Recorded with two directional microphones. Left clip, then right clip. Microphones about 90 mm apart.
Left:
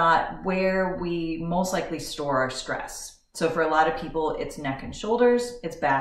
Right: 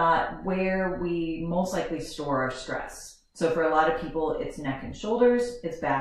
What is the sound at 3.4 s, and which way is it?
Speech, 10° left (ahead or behind).